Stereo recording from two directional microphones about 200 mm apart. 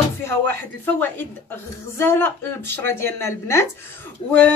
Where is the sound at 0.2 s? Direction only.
10° left (ahead or behind).